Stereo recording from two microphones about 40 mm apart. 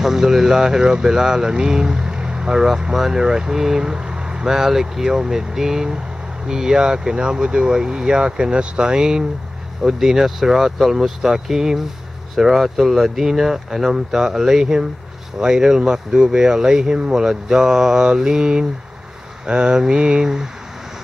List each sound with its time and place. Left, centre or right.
0.0 s speech: centre